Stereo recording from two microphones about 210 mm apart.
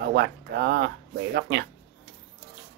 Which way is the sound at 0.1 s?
50° right (ahead or behind).